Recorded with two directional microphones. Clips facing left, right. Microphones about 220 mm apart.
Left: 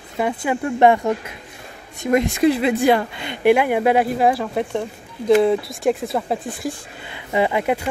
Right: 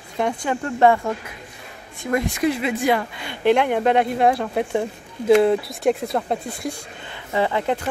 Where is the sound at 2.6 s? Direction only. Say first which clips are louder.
Left 4 dB; 30° left (ahead or behind).